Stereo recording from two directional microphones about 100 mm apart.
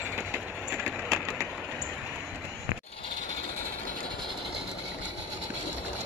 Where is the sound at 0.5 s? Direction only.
10° right (ahead or behind).